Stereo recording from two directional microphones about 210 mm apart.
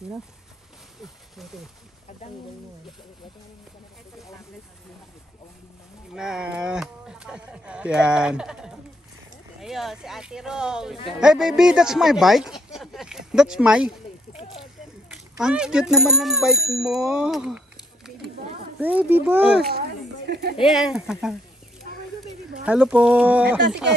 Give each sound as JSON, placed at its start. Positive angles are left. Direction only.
{"t": 6.1, "sound": "speech", "side_deg": -5}
{"t": 14.3, "sound": "speech", "side_deg": 30}
{"t": 15.0, "sound": "speech", "side_deg": -5}
{"t": 18.8, "sound": "speech", "side_deg": -10}
{"t": 19.7, "sound": "a sound", "side_deg": -50}
{"t": 20.5, "sound": "speech", "side_deg": 0}
{"t": 22.7, "sound": "speech", "side_deg": -5}